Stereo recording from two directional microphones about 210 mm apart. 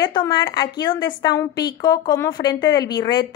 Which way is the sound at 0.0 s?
20° left (ahead or behind).